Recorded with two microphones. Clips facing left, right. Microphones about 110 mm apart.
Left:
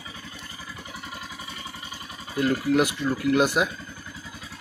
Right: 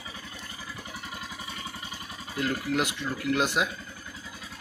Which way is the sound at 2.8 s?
5° left (ahead or behind).